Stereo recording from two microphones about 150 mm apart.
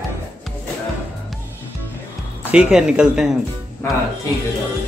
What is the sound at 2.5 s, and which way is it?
Speech, 5° right (ahead or behind).